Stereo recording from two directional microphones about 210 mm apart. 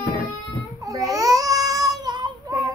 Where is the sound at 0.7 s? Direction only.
15° right (ahead or behind).